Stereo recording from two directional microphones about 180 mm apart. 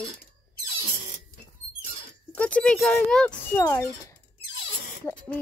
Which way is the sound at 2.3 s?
5° left (ahead or behind).